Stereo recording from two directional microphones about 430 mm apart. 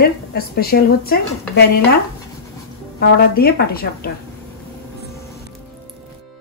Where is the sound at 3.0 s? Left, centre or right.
Left.